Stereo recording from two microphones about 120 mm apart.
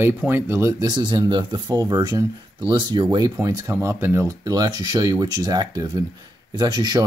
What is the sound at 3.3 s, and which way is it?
Speech, 30° right (ahead or behind).